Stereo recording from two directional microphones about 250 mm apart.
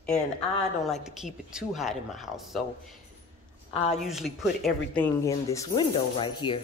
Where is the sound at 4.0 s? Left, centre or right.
Centre.